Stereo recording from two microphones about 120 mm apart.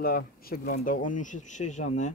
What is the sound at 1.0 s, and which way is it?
Speech, 90° left.